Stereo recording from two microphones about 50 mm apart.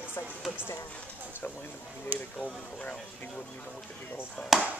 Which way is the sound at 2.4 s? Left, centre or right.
Left.